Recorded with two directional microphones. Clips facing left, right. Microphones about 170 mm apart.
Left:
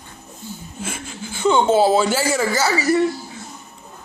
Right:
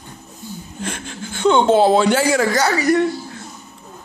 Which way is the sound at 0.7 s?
5° left (ahead or behind).